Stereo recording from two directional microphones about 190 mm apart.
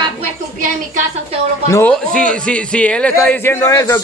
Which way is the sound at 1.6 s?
15° left (ahead or behind).